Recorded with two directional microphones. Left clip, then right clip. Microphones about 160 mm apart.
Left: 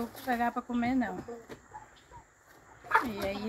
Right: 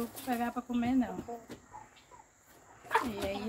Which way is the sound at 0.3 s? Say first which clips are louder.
Left 4 dB; 55° left (ahead or behind).